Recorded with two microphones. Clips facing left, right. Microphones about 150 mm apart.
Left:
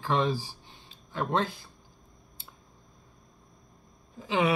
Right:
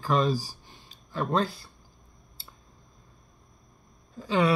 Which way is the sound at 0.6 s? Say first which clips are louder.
Even; 20° left (ahead or behind).